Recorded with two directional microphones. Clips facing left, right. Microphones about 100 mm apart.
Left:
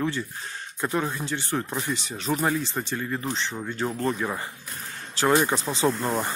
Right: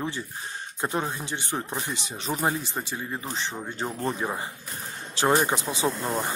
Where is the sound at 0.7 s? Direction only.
25° right (ahead or behind).